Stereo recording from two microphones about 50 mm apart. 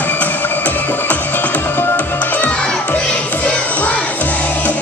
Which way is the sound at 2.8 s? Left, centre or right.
Left.